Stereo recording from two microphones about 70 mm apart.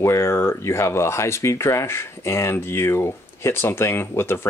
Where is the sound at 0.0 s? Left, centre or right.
Left.